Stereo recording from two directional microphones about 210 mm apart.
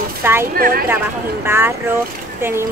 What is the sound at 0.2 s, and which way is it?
Speech, 10° right (ahead or behind).